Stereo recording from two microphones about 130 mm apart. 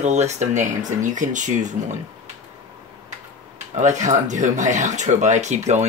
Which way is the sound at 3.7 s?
65° right (ahead or behind).